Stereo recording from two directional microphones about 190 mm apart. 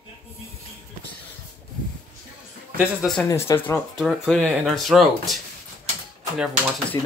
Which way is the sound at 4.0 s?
Centre (ahead or behind).